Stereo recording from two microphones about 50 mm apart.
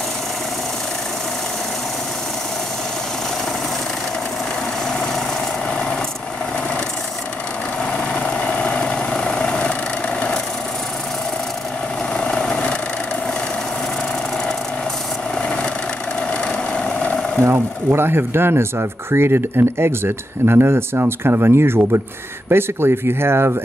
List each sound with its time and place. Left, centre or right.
8.1 s vehicle: centre
12.1 s vehicle: centre
15.3 s vehicle: centre
17.4 s speech: right